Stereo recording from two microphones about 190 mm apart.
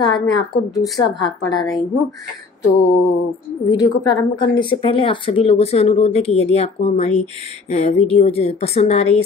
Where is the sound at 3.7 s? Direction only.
20° left (ahead or behind).